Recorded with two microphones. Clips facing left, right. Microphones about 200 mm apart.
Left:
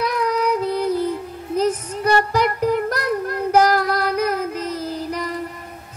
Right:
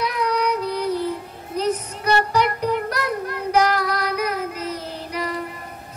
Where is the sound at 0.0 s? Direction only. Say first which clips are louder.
Left 2 dB; 45° left (ahead or behind).